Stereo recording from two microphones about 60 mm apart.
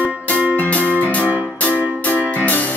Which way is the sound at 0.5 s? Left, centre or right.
Left.